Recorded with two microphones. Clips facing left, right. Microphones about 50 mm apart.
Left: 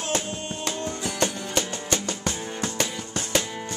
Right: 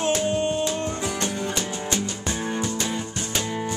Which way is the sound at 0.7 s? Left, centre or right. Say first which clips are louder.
Right 3 dB; right.